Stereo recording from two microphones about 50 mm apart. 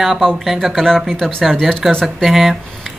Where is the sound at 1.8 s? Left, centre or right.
Centre.